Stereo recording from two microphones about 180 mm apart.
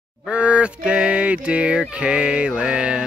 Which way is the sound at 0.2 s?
5° right (ahead or behind).